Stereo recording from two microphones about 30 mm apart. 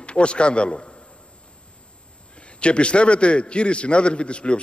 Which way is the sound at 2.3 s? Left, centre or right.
Left.